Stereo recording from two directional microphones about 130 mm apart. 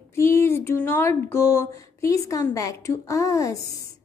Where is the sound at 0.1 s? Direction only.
20° left (ahead or behind).